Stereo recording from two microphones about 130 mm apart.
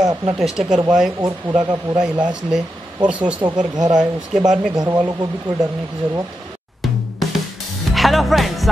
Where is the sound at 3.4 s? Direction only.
35° right (ahead or behind).